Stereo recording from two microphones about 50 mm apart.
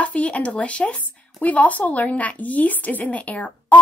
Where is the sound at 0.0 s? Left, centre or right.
Left.